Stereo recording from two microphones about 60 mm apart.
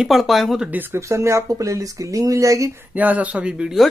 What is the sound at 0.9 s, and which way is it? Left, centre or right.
Speech, right.